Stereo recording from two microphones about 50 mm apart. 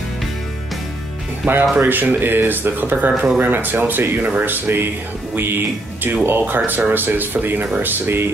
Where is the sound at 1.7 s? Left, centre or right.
Right.